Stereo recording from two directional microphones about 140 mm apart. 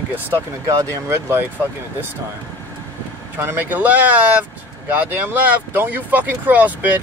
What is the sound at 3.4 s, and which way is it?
Speech, 15° right (ahead or behind).